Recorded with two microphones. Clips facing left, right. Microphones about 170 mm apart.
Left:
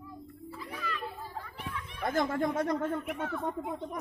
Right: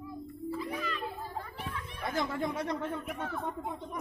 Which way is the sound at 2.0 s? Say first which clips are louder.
Left 4 dB; 50° left (ahead or behind).